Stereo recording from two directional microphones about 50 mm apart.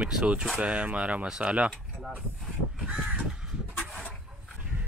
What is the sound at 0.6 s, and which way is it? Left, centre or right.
Speech, right.